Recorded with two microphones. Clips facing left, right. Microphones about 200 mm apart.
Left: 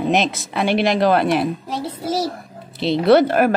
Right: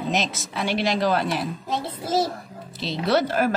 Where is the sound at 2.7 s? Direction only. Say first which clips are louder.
Left 9 dB; 60° left (ahead or behind).